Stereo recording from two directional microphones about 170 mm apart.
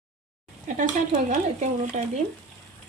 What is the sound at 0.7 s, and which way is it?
Stir, 45° right (ahead or behind).